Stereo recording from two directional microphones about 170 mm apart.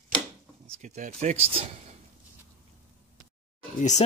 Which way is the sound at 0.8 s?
45° right (ahead or behind).